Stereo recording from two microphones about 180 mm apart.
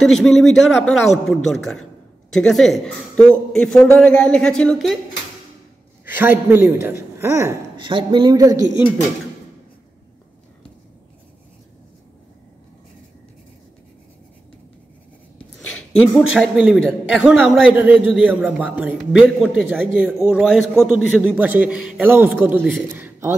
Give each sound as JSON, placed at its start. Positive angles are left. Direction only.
{"t": 0.0, "sound": "a man's voice", "side_deg": 0}
{"t": 6.0, "sound": "a man's voice", "side_deg": -10}
{"t": 7.7, "sound": "speech", "side_deg": -25}
{"t": 16.0, "sound": "a man's voice", "side_deg": 0}